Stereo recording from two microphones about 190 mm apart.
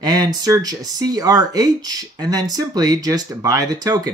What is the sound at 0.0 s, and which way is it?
Speech, 20° right (ahead or behind).